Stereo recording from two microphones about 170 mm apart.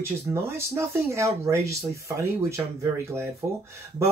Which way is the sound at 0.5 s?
15° right (ahead or behind).